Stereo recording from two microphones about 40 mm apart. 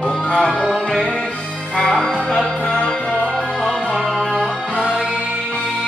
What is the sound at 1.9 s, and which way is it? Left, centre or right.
Music, centre.